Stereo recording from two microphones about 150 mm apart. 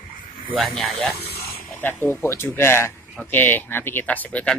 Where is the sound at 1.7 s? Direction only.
15° left (ahead or behind).